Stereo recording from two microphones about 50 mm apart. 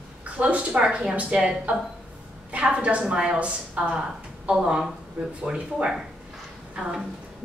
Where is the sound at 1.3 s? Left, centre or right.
Centre.